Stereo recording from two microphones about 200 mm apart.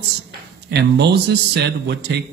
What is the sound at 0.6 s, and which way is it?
Speech, 55° right (ahead or behind).